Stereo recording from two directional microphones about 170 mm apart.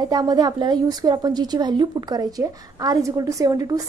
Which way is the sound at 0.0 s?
25° right (ahead or behind).